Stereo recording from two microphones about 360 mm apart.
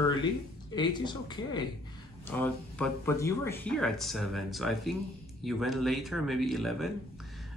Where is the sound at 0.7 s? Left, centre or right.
Centre.